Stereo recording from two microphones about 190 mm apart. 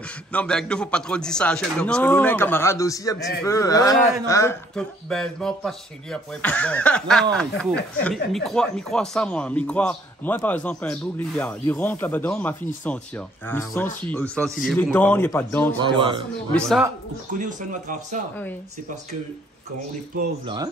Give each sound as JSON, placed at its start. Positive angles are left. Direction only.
{"t": 0.3, "sound": "speech", "side_deg": 5}
{"t": 4.7, "sound": "speech", "side_deg": 5}
{"t": 15.8, "sound": "speech", "side_deg": -25}
{"t": 16.5, "sound": "speech", "side_deg": 5}
{"t": 17.3, "sound": "speech", "side_deg": -45}
{"t": 20.4, "sound": "speech", "side_deg": -20}